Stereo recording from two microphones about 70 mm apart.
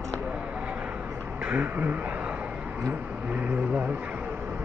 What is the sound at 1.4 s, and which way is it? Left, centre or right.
Speech, right.